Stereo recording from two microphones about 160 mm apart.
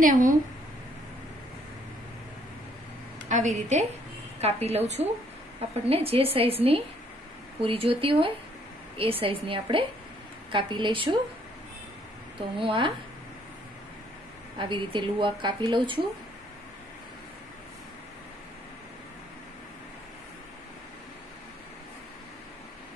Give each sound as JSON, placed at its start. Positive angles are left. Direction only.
{"t": 0.0, "sound": "a woman's voice", "side_deg": -55}
{"t": 3.3, "sound": "a woman's voice", "side_deg": -50}
{"t": 12.4, "sound": "a woman's voice", "side_deg": -35}
{"t": 14.6, "sound": "a woman's voice", "side_deg": -30}